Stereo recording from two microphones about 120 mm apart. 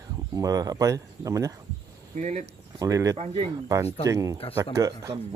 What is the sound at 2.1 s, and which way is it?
Speech, 75° right (ahead or behind).